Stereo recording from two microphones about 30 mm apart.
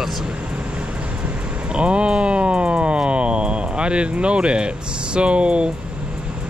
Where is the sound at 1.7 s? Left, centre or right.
Right.